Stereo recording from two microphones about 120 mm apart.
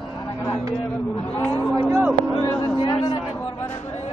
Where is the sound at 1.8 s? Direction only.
25° right (ahead or behind).